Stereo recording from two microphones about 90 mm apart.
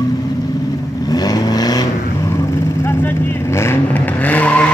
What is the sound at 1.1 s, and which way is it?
Vehicle, 45° left (ahead or behind).